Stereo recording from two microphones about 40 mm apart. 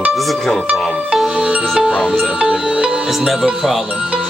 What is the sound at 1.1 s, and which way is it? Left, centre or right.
Music, centre.